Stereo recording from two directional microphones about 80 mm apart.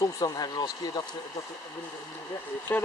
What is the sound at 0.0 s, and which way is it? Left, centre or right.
Speech, left.